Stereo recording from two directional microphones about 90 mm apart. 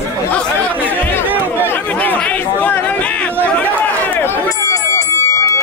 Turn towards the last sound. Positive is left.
turn(degrees=35)  # may be behind; listen again after turning